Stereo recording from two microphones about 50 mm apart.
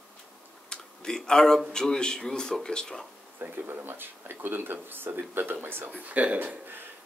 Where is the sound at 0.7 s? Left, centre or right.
Centre.